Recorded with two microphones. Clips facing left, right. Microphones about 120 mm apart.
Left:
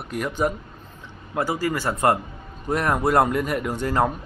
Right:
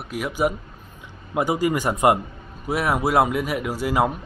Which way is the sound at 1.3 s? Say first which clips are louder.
Right 3 dB; 20° right (ahead or behind).